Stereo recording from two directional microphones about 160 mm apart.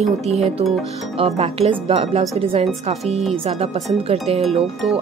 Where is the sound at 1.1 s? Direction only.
40° right (ahead or behind).